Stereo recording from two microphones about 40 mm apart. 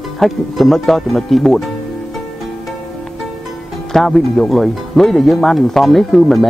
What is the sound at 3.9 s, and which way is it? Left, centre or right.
Speech, centre.